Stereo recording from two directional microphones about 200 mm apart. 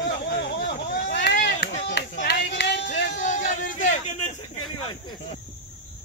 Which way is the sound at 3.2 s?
40° left (ahead or behind).